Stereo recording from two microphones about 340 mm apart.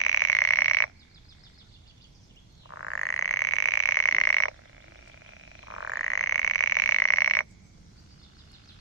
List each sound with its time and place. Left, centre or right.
0.0 s frog: left
2.7 s frog: left
5.8 s frog: left